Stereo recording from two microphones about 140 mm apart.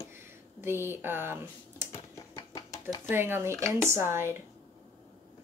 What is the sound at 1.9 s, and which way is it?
Typing, 25° left (ahead or behind).